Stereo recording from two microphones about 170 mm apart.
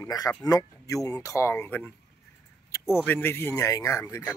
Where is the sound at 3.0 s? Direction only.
10° left (ahead or behind).